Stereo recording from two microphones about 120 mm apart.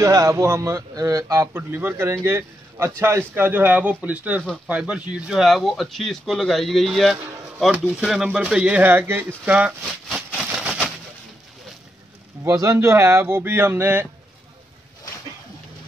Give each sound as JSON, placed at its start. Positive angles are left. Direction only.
{"t": 0.0, "sound": "a man's voice", "side_deg": -30}
{"t": 9.8, "sound": "a sound", "side_deg": 5}
{"t": 12.4, "sound": "a man's voice", "side_deg": -25}